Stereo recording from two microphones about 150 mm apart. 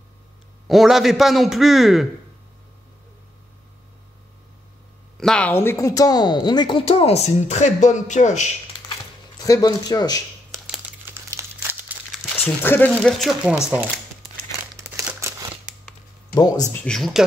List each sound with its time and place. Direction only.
0.7 s a man's voice: centre (ahead or behind)
5.1 s speech: 5° left (ahead or behind); by 8.5 s 50° left (ahead or behind)
9.4 s speech: 25° left (ahead or behind)
11.1 s crumpling: 15° right (ahead or behind)
12.4 s speech: 15° left (ahead or behind)
13.0 s a man's voice: centre (ahead or behind)
14.8 s crumpling: 15° right (ahead or behind)
16.8 s a man's voice: 5° left (ahead or behind)